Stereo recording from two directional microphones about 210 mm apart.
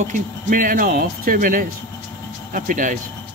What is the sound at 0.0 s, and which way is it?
Speech, 40° right (ahead or behind).